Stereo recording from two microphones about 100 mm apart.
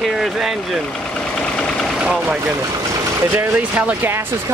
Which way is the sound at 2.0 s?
10° right (ahead or behind).